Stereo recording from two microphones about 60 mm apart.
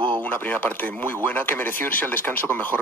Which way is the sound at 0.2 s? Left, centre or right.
Left.